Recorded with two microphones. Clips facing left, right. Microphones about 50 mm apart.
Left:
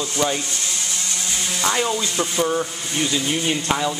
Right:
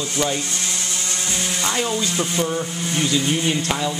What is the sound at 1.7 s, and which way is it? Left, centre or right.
Speech, centre.